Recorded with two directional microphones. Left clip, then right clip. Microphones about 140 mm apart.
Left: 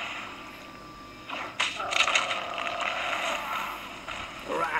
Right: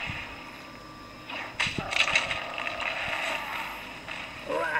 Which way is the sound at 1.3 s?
45° left (ahead or behind).